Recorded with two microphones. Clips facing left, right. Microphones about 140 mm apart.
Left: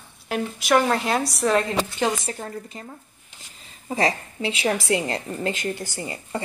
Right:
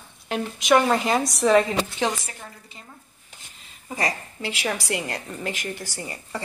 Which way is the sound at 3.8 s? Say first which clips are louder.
Left 5 dB; 30° left (ahead or behind).